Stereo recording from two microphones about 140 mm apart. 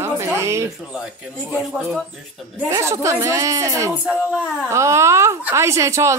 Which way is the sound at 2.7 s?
25° right (ahead or behind).